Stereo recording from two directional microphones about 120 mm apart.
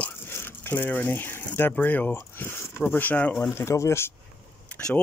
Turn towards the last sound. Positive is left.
turn(degrees=15)  # may be behind; listen again after turning